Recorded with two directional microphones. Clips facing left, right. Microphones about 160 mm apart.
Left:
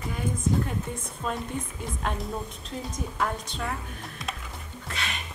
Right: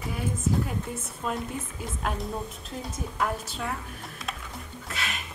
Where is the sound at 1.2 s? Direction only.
Centre (ahead or behind).